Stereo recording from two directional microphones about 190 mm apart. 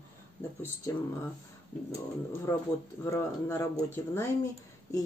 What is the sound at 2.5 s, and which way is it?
Speech, 15° left (ahead or behind).